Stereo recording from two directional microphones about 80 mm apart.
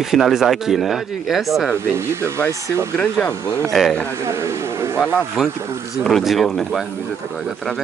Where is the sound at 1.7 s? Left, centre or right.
Right.